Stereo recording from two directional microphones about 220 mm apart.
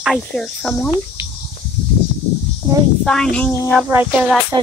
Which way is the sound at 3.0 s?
5° left (ahead or behind).